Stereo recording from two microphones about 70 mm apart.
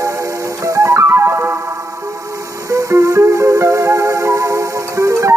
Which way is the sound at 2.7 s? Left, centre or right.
Right.